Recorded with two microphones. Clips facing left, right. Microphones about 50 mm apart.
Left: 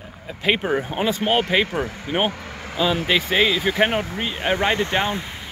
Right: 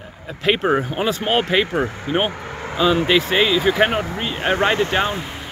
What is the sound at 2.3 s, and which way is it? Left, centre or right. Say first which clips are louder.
Vehicle: right 5 dB; right.